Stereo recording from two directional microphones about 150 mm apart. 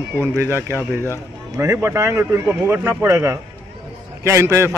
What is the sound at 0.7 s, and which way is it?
Speech, 20° left (ahead or behind).